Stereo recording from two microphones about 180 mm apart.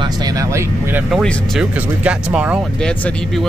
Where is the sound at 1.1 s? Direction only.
Centre (ahead or behind).